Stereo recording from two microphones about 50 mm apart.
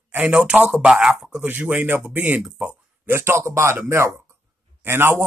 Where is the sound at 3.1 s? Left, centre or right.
Right.